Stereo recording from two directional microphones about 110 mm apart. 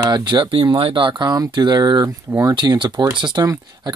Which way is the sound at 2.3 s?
25° right (ahead or behind).